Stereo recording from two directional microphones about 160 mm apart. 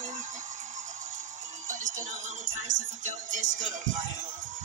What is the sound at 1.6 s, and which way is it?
Music, 50° right (ahead or behind).